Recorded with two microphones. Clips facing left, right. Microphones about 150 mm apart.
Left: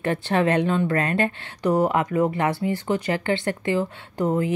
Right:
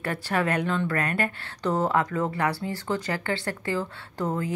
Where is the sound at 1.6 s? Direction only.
15° left (ahead or behind).